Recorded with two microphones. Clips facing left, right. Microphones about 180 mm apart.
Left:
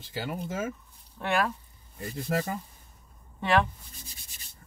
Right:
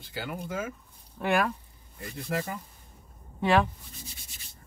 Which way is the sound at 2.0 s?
35° left (ahead or behind).